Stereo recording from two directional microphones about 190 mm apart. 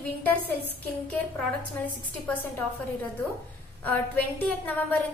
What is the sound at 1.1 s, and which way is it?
A woman's voice, 5° left (ahead or behind).